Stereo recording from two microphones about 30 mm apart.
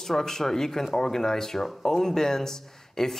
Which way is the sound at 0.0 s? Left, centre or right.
Centre.